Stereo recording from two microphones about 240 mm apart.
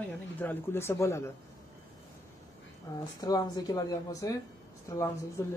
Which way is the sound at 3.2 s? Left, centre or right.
Centre.